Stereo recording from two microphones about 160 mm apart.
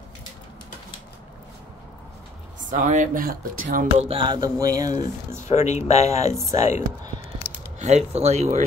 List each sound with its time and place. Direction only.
2.7 s speech: 50° right (ahead or behind)
4.1 s music: 30° right (ahead or behind)
5.5 s speech: 45° left (ahead or behind)
7.8 s speech: 45° right (ahead or behind)